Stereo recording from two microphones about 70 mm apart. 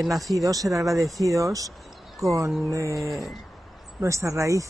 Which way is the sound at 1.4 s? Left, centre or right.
Right.